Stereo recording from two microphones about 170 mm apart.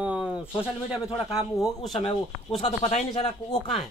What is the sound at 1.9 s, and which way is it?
Speech, 30° left (ahead or behind).